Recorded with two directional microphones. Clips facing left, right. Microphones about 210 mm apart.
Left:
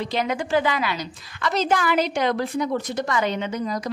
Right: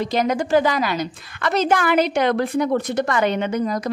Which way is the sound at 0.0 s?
45° right (ahead or behind).